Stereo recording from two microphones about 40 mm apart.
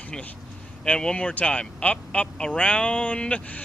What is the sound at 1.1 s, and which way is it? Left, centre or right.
A man's voice, left.